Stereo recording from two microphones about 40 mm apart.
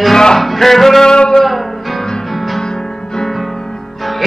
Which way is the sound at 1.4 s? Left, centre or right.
Centre.